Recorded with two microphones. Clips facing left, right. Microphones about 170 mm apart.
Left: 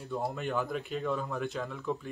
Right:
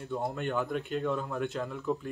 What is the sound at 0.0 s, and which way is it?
Speech, centre (ahead or behind).